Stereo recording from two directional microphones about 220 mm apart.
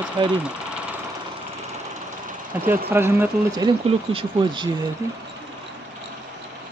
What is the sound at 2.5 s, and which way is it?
Speech, 10° right (ahead or behind).